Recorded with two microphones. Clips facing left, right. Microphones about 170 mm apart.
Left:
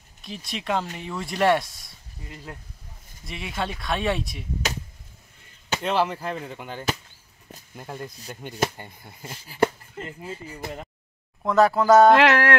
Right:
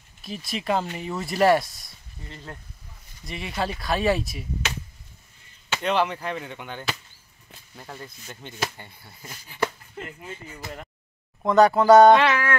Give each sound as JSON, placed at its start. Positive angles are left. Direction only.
{"t": 0.2, "sound": "speech", "side_deg": 0}
{"t": 2.2, "sound": "speech", "side_deg": 10}
{"t": 3.3, "sound": "speech", "side_deg": 0}
{"t": 5.8, "sound": "speech", "side_deg": 5}
{"t": 7.7, "sound": "speech", "side_deg": 15}
{"t": 9.2, "sound": "a sound", "side_deg": 30}
{"t": 10.0, "sound": "speech", "side_deg": 30}
{"t": 11.4, "sound": "speech", "side_deg": 0}
{"t": 12.2, "sound": "music", "side_deg": 90}